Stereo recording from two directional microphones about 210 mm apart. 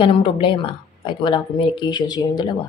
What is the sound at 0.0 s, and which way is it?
Speech, 25° left (ahead or behind).